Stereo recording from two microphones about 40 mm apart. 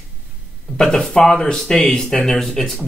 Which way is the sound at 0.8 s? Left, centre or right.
Centre.